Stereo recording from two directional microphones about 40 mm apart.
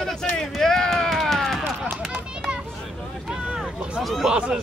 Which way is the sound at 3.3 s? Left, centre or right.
Right.